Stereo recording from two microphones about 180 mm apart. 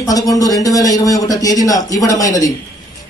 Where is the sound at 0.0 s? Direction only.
20° left (ahead or behind).